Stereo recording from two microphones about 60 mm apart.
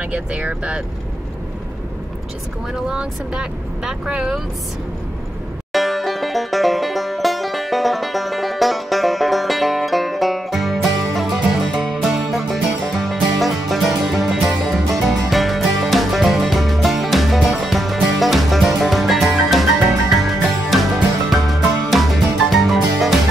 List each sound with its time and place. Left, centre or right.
0.1 s speech: right
2.7 s speech: centre
5.7 s banjo: centre
20.7 s music: centre